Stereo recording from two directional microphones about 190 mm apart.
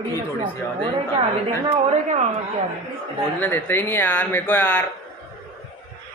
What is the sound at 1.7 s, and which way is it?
Speech, 35° right (ahead or behind).